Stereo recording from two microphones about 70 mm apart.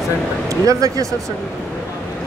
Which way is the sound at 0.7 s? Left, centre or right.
Right.